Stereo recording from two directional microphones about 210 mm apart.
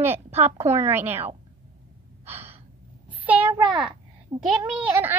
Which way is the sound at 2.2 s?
10° right (ahead or behind).